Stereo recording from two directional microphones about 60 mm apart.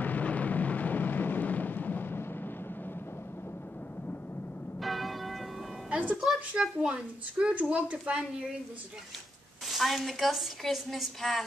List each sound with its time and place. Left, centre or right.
0.0 s a sound: left
4.8 s church bell: centre
5.9 s music: right
6.8 s a woman's voice: centre
9.7 s a woman's voice: centre